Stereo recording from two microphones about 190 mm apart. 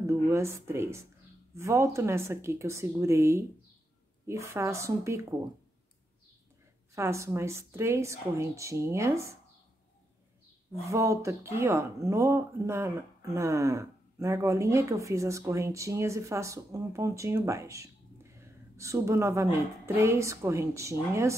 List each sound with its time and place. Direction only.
0.0 s speech: 15° right (ahead or behind)
7.0 s speech: 15° right (ahead or behind)
10.7 s a woman's voice: 15° right (ahead or behind)